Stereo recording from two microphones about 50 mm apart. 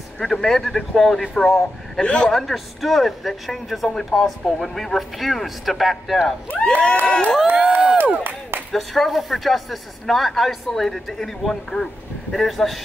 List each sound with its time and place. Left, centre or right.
0.2 s speech: centre
2.0 s speech: centre
2.3 s speech: centre
6.5 s crowd: left
7.5 s speech: right
8.7 s speech: centre